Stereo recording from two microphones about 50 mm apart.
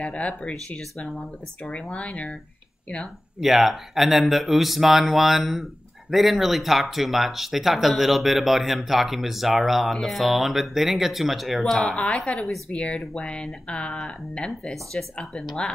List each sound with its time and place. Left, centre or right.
0.0 s speech: left
3.3 s speech: centre
11.8 s a woman's voice: centre
14.7 s speech: centre